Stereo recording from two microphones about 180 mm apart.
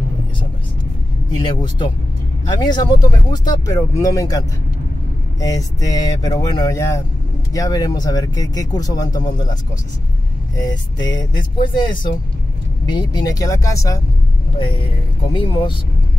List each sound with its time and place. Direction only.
1.3 s speech: 25° left (ahead or behind)
10.6 s speech: 25° left (ahead or behind)
15.3 s speech: 25° left (ahead or behind)